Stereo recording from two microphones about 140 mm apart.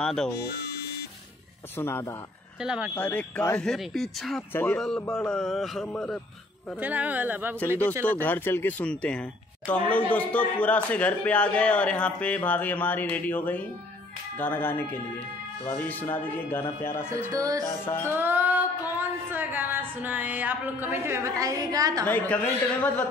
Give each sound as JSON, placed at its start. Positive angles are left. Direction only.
{"t": 0.0, "sound": "a man's voice", "side_deg": 5}
{"t": 1.8, "sound": "a man's voice", "side_deg": 15}
{"t": 2.6, "sound": "a man's voice", "side_deg": -5}
{"t": 2.9, "sound": "a man's voice", "side_deg": 10}
{"t": 4.5, "sound": "a man's voice", "side_deg": 15}
{"t": 4.7, "sound": "a man's voice", "side_deg": 5}
{"t": 6.8, "sound": "a sound", "side_deg": -10}
{"t": 8.0, "sound": "a man's voice", "side_deg": 10}
{"t": 17.3, "sound": "music", "side_deg": -25}
{"t": 17.6, "sound": "a man's voice", "side_deg": 15}
{"t": 18.1, "sound": "a sound", "side_deg": -15}
{"t": 22.0, "sound": "a man's voice", "side_deg": 15}